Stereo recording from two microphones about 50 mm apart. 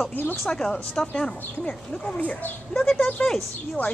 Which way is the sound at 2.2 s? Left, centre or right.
Left.